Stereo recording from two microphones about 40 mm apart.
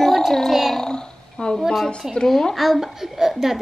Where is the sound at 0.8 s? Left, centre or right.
Centre.